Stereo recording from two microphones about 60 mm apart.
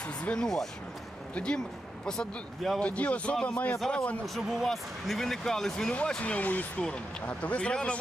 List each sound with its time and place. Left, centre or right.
0.0 s speech: left
0.4 s speech: centre
2.0 s speech: centre
2.8 s speech: left
4.4 s speech: centre
6.0 s speech: centre
6.8 s speech: centre